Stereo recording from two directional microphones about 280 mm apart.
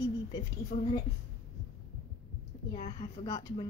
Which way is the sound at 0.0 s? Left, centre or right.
Centre.